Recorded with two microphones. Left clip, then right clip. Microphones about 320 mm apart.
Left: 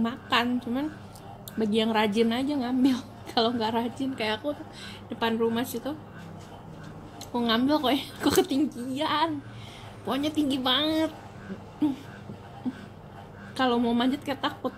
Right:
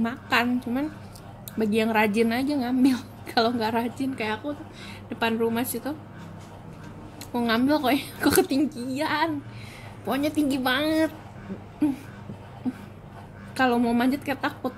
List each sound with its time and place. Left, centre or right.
0.0 s a woman's voice: centre
7.3 s a woman's voice: centre
13.6 s a woman's voice: centre